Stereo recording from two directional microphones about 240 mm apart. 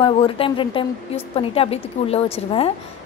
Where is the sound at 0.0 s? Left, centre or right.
Left.